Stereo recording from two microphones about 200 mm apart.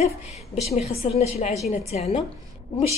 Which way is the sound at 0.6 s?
30° left (ahead or behind).